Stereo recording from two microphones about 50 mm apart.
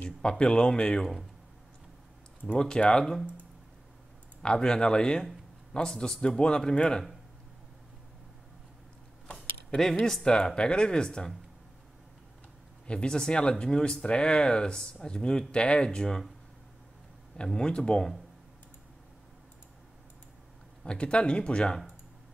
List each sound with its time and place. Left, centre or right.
0.2 s speech: centre
2.6 s speech: centre
4.4 s speech: centre
9.8 s speech: centre
12.8 s speech: left
17.5 s speech: centre
20.8 s speech: left